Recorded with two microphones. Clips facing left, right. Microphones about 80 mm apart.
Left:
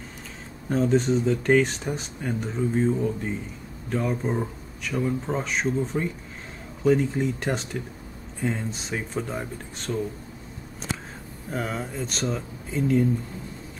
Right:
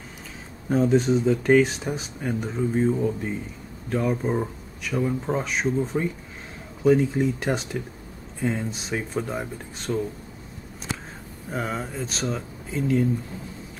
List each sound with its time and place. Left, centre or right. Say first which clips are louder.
0.7 s speech: right 2 dB; centre
11.5 s speech: right 1 dB; centre